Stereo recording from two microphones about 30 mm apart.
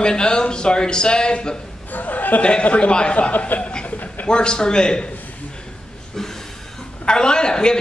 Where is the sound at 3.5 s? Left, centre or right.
Left.